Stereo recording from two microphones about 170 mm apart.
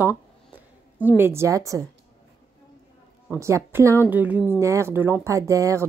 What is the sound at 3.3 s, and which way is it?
Speech, 15° right (ahead or behind).